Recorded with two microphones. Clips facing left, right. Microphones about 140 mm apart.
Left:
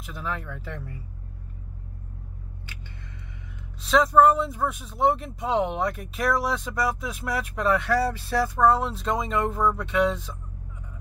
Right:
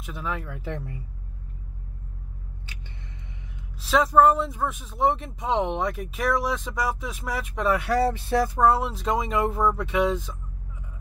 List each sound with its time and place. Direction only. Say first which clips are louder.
0.0 s speech: right 1 dB; centre (ahead or behind)
0.5 s speech: right 3 dB; 15° right (ahead or behind)
3.8 s speech: even; centre (ahead or behind)
7.8 s a sound: right 1 dB; 20° right (ahead or behind)
8.6 s speech: even; 5° right (ahead or behind)